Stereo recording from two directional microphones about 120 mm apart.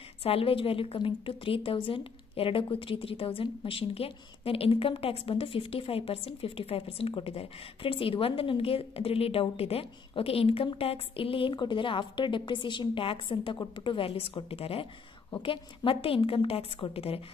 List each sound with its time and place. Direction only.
0.2 s a woman's voice: 50° left (ahead or behind)